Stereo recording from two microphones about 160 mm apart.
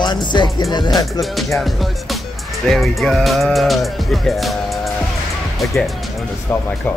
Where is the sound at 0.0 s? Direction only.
30° left (ahead or behind).